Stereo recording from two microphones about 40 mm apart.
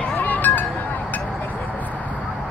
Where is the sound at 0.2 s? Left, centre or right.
Left.